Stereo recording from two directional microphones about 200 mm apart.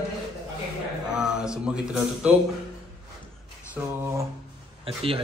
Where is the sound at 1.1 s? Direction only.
5° right (ahead or behind).